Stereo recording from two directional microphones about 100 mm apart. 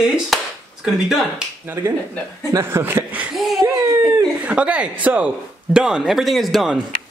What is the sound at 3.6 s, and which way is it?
Baby cry, 25° right (ahead or behind).